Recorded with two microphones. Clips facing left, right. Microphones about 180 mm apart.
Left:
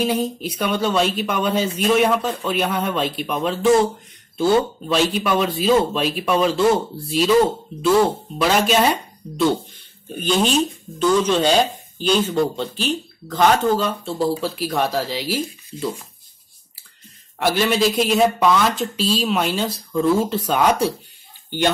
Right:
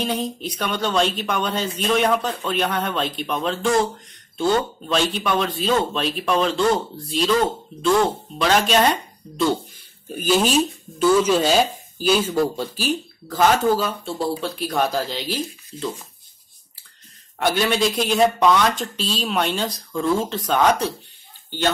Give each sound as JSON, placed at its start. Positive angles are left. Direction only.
{"t": 0.0, "sound": "speech", "side_deg": 5}
{"t": 17.4, "sound": "speech", "side_deg": 0}